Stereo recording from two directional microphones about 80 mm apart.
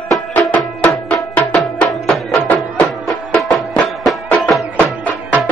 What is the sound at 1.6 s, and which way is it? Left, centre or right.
Music, centre.